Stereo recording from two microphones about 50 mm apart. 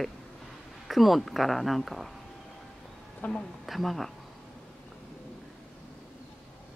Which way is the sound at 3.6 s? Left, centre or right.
Centre.